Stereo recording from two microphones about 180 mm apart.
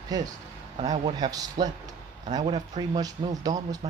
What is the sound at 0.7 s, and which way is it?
Speech, 40° right (ahead or behind).